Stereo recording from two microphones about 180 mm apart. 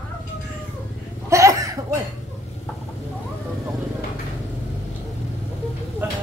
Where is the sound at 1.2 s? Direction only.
15° right (ahead or behind).